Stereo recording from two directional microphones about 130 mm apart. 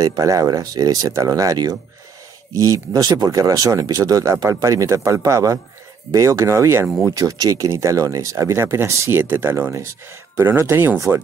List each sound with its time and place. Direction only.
0.0 s speech: 25° right (ahead or behind)